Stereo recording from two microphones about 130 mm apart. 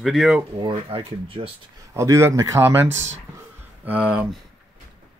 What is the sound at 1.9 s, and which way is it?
Speech, 20° right (ahead or behind).